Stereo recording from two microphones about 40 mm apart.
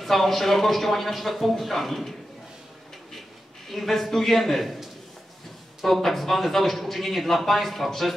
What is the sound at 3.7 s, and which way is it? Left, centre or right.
A man's voice, centre.